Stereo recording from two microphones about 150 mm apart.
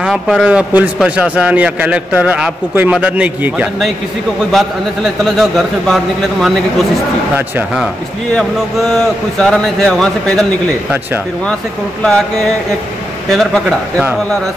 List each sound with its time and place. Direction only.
0.0 s a man's voice: 5° right (ahead or behind)
7.3 s a man's voice: 15° right (ahead or behind)
8.4 s a man's voice: centre (ahead or behind)
13.3 s a man's voice: centre (ahead or behind)